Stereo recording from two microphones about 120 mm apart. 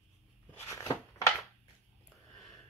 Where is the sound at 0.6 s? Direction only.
25° left (ahead or behind).